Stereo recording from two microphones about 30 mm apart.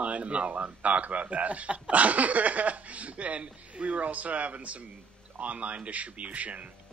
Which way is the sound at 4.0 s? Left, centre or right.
Right.